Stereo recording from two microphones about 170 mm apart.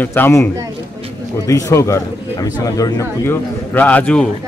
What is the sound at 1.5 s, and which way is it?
A man's voice, 15° left (ahead or behind).